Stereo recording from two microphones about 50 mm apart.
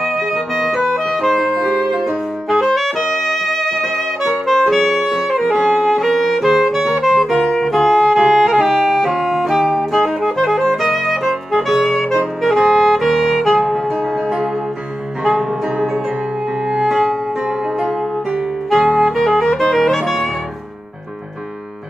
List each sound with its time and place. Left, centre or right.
0.0 s music: centre
15.2 s music: centre
16.8 s music: centre
18.7 s saxophone: centre